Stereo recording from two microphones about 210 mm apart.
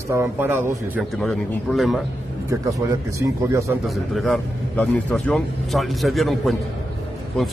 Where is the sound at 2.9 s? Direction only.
15° right (ahead or behind).